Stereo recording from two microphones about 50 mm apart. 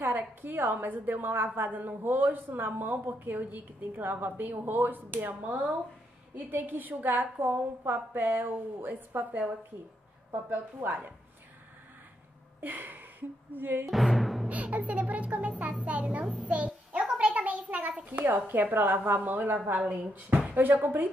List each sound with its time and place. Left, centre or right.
0.0 s a woman's voice: right
12.5 s a sound: right
13.5 s a woman's voice: right
13.8 s music: centre
14.5 s music: right
17.2 s a sound: right
18.2 s a woman's voice: right